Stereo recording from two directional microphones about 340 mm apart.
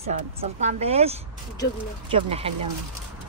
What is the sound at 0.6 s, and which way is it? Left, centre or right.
Speech, centre.